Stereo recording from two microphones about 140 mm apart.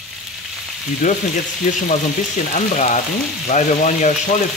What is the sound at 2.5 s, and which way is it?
Speech, 60° left (ahead or behind).